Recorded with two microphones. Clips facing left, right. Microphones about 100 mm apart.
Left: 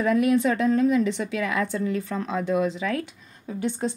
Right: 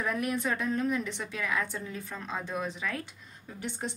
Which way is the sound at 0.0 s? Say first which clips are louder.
Left 10 dB; 90° left.